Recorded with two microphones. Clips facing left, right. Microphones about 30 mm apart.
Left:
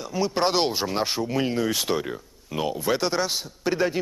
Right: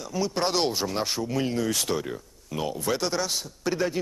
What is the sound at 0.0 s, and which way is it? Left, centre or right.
Speech, centre.